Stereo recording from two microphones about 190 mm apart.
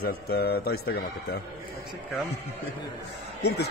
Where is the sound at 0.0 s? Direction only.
55° left (ahead or behind).